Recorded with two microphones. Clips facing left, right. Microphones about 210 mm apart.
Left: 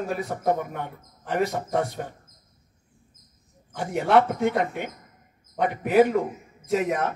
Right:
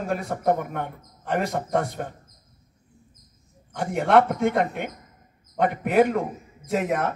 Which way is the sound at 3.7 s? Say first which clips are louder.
Right 1 dB; 55° right (ahead or behind).